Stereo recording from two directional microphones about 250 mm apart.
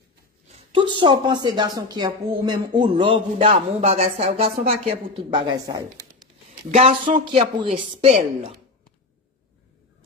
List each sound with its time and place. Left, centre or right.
0.5 s speech: centre